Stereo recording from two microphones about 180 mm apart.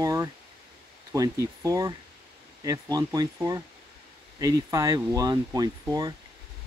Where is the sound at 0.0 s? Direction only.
20° right (ahead or behind).